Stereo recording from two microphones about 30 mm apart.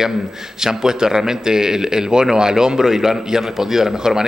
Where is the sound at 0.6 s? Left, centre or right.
Centre.